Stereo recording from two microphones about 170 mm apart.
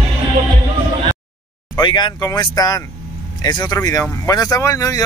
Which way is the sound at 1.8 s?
25° left (ahead or behind).